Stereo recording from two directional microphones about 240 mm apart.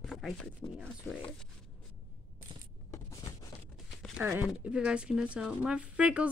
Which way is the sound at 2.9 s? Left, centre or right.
Centre.